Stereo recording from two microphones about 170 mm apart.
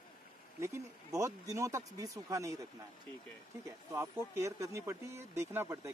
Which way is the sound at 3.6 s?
15° right (ahead or behind).